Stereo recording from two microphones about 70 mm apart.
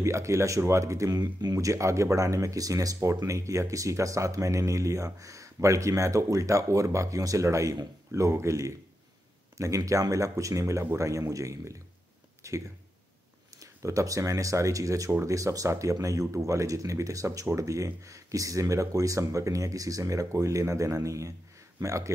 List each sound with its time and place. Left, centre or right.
0.0 s speech: right